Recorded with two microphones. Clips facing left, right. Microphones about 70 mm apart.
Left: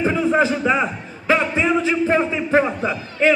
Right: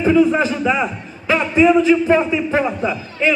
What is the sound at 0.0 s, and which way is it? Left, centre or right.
A man's voice, left.